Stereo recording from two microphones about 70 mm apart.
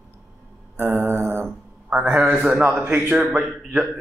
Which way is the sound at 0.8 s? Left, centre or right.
Right.